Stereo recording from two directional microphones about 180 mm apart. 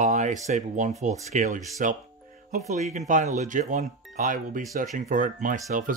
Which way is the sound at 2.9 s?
45° right (ahead or behind).